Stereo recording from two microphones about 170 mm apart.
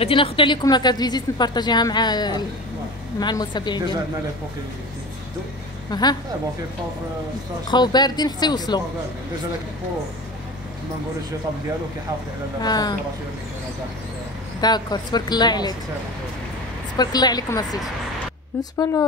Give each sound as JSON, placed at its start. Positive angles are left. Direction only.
{"t": 0.0, "sound": "a woman's voice", "side_deg": 30}
{"t": 5.9, "sound": "speech", "side_deg": 25}
{"t": 7.7, "sound": "a woman's voice", "side_deg": 25}
{"t": 12.6, "sound": "a woman's voice", "side_deg": 25}
{"t": 14.6, "sound": "a woman's voice", "side_deg": 25}
{"t": 16.9, "sound": "a woman's voice", "side_deg": 25}